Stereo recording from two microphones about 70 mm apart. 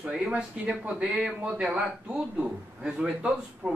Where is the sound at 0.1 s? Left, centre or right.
Centre.